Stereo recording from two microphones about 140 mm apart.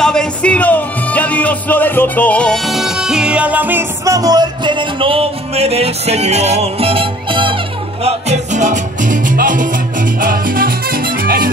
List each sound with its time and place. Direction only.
0.0 s music: 5° left (ahead or behind); by 7.5 s 35° right (ahead or behind)
8.0 s music: 50° right (ahead or behind); by 11.4 s 90° right